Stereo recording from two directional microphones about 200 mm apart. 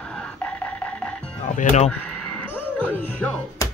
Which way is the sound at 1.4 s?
35° left (ahead or behind).